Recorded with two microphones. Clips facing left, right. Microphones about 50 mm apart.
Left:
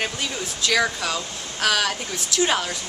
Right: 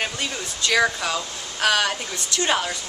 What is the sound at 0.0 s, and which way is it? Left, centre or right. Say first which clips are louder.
A woman's voice: even; centre.